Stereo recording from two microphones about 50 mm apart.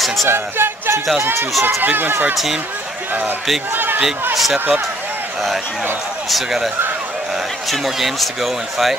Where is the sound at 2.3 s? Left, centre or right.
Centre.